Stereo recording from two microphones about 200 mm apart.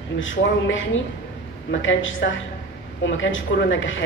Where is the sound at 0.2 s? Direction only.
70° left (ahead or behind).